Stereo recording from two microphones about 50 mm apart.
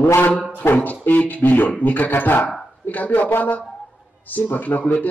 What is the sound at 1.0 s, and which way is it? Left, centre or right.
Speech, left.